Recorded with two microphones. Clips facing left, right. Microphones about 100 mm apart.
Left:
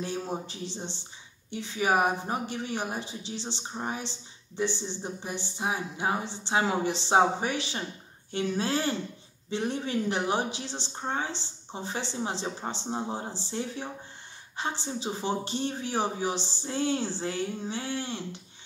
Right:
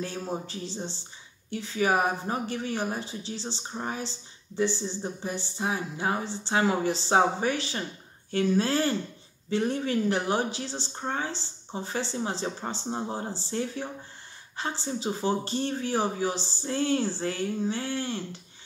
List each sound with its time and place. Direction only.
0.0 s speech: 20° left (ahead or behind)